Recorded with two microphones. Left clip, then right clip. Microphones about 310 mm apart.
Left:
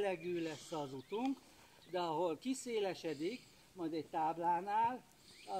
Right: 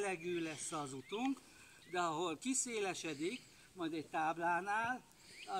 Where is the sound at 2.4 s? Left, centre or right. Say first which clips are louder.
Left 1 dB; right.